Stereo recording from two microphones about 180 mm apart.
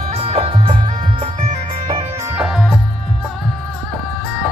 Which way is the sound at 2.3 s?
Centre (ahead or behind).